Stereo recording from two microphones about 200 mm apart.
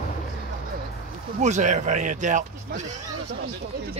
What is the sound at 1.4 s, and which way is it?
Speech, 35° right (ahead or behind).